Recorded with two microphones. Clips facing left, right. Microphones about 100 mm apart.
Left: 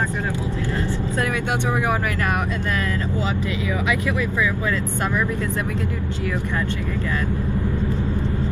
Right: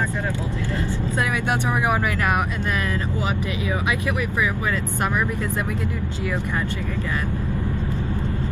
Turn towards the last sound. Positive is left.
turn(degrees=-20)  # may be behind; listen again after turning